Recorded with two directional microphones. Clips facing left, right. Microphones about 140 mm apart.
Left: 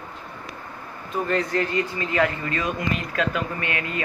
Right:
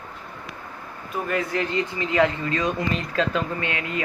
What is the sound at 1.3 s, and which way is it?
Speech, 10° right (ahead or behind).